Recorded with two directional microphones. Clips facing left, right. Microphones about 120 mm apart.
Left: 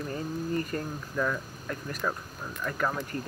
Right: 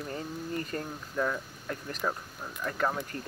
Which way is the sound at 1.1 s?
30° right (ahead or behind).